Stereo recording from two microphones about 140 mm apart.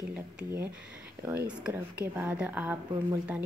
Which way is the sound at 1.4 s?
10° right (ahead or behind).